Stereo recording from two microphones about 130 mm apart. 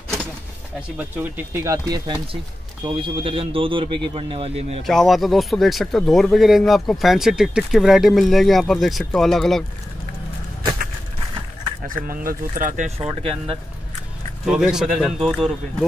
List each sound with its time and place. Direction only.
0.7 s speech: 15° right (ahead or behind)
2.8 s speech: 35° right (ahead or behind)
4.8 s speech: centre (ahead or behind)
11.9 s speech: 90° right
13.1 s speech: 45° right (ahead or behind)
14.4 s speech: 5° right (ahead or behind)